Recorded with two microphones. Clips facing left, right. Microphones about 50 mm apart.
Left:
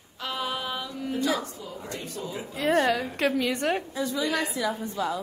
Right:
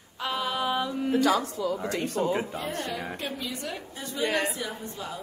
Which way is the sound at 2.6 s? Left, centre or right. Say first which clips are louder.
Left 9 dB; left.